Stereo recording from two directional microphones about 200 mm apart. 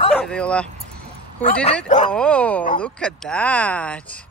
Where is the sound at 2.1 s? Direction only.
5° left (ahead or behind).